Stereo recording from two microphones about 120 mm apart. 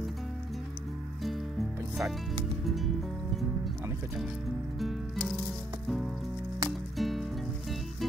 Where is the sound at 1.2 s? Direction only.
Centre (ahead or behind).